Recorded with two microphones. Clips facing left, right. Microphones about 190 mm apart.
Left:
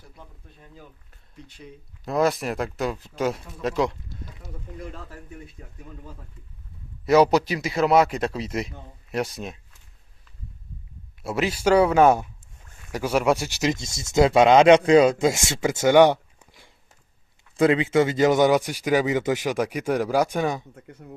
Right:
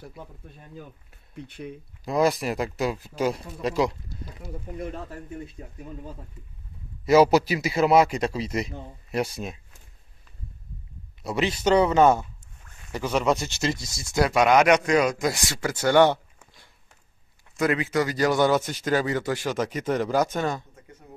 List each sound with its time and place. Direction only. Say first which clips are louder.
1.3 s speech: right 7 dB; 60° right (ahead or behind)
2.0 s a man's voice: even; centre (ahead or behind)
4.7 s speech: right 4 dB; 25° right (ahead or behind)
7.1 s a man's voice: even; 5° right (ahead or behind)
11.2 s speech: left 1 dB; 5° left (ahead or behind)
17.6 s speech: left 5 dB; 25° left (ahead or behind)